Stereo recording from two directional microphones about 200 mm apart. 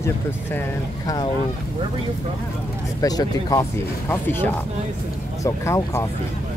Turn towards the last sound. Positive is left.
turn(degrees=15)  # may be behind; listen again after turning